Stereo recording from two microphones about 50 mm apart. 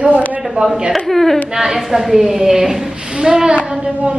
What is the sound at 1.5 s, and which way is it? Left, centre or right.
A woman's voice, centre.